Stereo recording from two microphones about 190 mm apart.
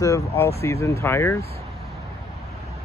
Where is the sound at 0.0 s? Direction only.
15° left (ahead or behind).